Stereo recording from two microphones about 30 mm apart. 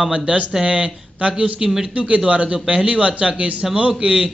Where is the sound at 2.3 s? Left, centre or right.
Right.